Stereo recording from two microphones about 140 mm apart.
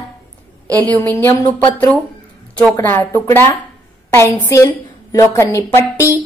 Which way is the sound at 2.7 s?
15° left (ahead or behind).